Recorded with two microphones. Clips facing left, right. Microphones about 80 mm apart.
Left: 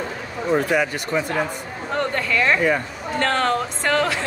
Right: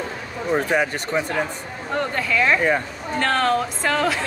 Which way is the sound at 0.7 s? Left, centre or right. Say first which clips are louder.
Right 1 dB; right.